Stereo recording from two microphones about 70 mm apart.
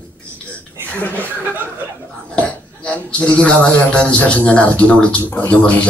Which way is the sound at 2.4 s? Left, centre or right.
Centre.